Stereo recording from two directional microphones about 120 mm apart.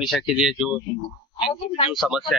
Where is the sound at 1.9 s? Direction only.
5° right (ahead or behind).